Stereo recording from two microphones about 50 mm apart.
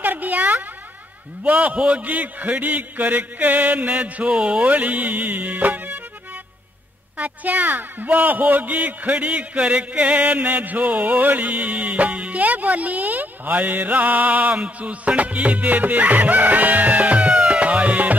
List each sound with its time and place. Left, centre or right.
0.0 s a sound: right
1.4 s a man's voice: right
7.2 s a woman's voice: right
14.6 s music: right